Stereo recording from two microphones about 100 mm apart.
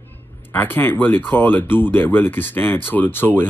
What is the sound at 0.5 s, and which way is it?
Speech, 20° left (ahead or behind).